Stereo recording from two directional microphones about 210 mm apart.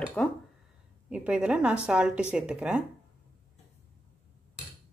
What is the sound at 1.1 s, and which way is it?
Speech, 5° right (ahead or behind).